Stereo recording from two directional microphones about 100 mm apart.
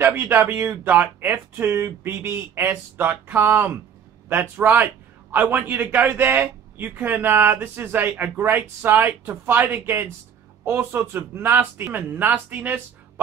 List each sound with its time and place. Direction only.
0.0 s a man's voice: 25° right (ahead or behind)